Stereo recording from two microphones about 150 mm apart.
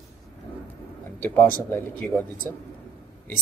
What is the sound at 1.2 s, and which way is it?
Speech, 15° left (ahead or behind).